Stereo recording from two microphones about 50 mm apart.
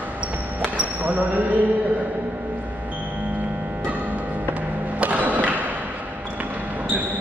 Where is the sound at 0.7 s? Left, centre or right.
Right.